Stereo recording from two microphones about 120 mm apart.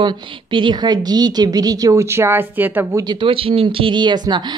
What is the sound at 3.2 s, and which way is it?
Speech, 50° right (ahead or behind).